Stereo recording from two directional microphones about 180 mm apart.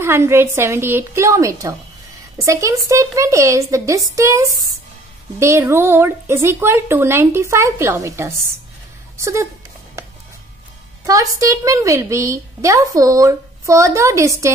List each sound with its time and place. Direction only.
0.0 s a woman's voice: 15° right (ahead or behind)
11.1 s a woman's voice: 20° right (ahead or behind)